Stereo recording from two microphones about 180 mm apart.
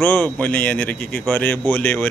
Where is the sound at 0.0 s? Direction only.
10° left (ahead or behind).